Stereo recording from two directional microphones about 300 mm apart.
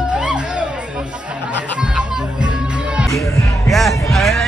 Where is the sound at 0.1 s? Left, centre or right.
Centre.